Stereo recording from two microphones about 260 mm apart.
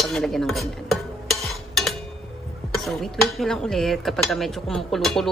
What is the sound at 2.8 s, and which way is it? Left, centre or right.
Speech, centre.